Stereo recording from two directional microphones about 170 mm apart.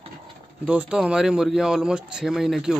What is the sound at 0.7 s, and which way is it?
Speech, 5° right (ahead or behind).